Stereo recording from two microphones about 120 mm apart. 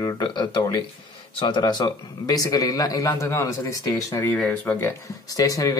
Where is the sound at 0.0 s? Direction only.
30° left (ahead or behind).